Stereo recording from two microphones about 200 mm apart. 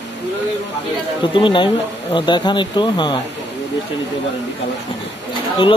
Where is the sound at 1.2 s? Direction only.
25° left (ahead or behind).